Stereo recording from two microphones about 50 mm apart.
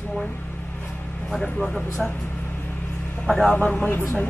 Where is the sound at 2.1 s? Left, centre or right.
Left.